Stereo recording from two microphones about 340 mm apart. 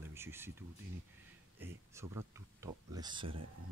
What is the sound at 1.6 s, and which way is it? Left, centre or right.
Speech, centre.